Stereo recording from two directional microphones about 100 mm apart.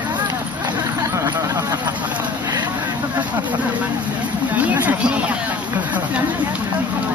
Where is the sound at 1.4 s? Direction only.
35° right (ahead or behind).